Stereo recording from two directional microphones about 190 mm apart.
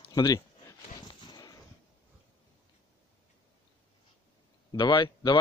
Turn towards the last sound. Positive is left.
turn(degrees=25)  # may be behind; listen again after turning